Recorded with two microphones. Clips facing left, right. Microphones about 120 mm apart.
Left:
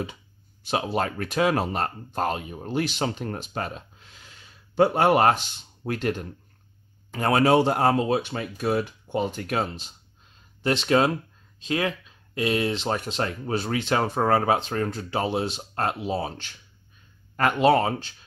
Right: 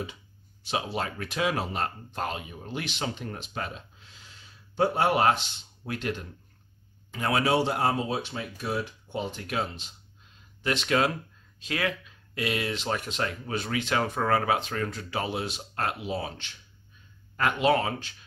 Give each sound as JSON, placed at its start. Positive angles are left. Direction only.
{"t": 0.7, "sound": "speech", "side_deg": 50}
{"t": 10.6, "sound": "speech", "side_deg": 30}
{"t": 17.4, "sound": "speech", "side_deg": 40}